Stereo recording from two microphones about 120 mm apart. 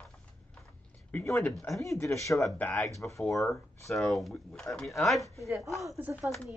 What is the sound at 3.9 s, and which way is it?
A man's voice, centre (ahead or behind).